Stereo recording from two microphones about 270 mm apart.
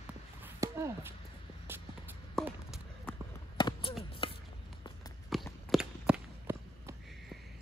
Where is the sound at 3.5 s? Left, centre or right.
Centre.